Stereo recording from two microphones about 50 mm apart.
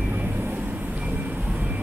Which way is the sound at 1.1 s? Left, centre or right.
Right.